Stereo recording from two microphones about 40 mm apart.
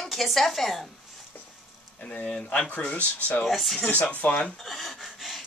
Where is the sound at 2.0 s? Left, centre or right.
Left.